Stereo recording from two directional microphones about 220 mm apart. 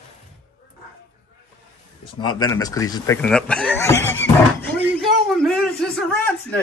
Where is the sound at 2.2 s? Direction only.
15° left (ahead or behind).